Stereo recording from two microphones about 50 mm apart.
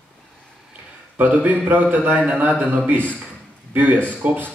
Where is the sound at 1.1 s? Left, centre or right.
Right.